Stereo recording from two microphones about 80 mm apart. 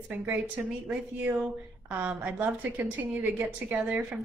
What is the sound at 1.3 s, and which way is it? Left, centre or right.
A woman's voice, centre.